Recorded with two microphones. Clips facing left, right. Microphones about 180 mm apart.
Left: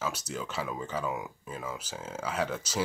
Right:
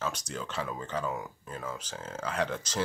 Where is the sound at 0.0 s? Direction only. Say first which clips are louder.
Left 1 dB; 10° left (ahead or behind).